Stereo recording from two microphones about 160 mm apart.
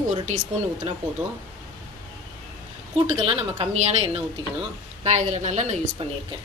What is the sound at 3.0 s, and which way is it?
A woman's voice, 40° right (ahead or behind).